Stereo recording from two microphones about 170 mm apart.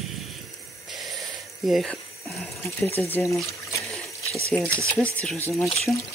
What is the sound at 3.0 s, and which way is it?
Speech, 15° left (ahead or behind).